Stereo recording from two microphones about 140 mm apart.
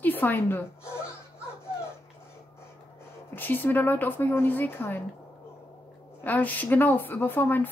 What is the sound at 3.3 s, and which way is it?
A woman's voice, 15° left (ahead or behind).